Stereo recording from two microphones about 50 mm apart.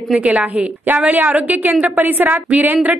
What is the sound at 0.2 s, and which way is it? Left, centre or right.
A woman's voice, right.